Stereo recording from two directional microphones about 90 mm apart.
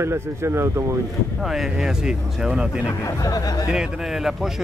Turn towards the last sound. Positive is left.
turn(degrees=-5)  # may be behind; listen again after turning